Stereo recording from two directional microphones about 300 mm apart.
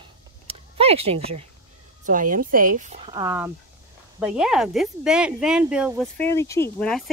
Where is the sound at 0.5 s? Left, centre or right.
Centre.